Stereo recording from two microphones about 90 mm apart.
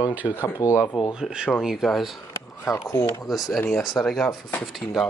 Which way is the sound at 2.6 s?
30° left (ahead or behind).